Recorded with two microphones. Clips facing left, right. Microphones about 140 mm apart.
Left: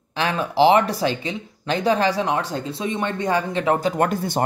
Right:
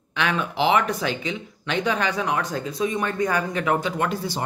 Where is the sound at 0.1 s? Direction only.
35° left (ahead or behind).